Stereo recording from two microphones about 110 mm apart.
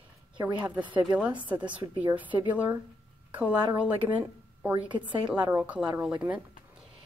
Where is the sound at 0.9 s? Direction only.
45° right (ahead or behind).